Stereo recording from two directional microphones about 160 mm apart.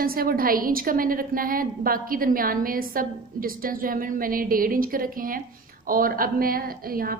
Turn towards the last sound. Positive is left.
turn(degrees=-65)  # may be behind; listen again after turning